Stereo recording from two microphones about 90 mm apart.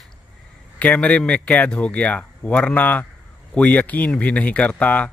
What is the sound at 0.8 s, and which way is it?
Speech, 15° left (ahead or behind).